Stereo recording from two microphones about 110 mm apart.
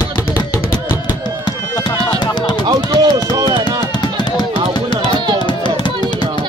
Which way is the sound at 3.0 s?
40° right (ahead or behind).